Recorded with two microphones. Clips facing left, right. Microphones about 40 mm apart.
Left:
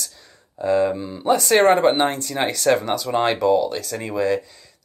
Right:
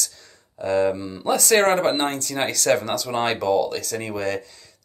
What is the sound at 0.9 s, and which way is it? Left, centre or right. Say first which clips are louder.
Speech: left 3 dB; centre.